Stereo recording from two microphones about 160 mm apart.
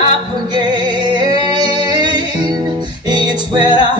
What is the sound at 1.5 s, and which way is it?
Music, 25° right (ahead or behind).